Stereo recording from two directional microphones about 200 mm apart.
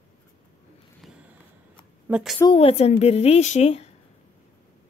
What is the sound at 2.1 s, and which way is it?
Speech, centre (ahead or behind).